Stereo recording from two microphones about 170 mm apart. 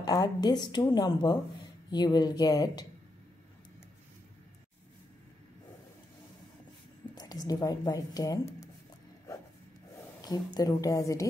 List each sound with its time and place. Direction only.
0.0 s speech: 25° left (ahead or behind)
7.2 s speech: 20° left (ahead or behind)
10.2 s speech: 25° left (ahead or behind)